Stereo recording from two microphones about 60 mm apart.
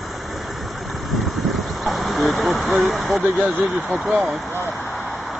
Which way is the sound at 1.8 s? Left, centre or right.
Centre.